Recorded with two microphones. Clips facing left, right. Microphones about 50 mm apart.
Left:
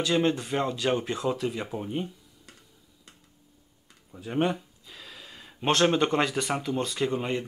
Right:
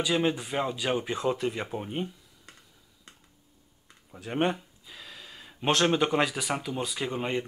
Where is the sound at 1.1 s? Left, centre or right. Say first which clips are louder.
Even; right.